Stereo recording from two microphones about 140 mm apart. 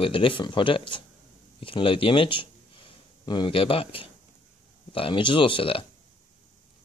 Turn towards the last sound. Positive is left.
turn(degrees=40)  # may be behind; listen again after turning